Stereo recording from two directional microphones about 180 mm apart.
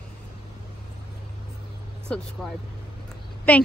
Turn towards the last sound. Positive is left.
turn(degrees=10)  # may be behind; listen again after turning